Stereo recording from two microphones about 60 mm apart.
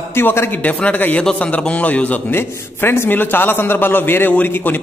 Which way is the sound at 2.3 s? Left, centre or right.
Left.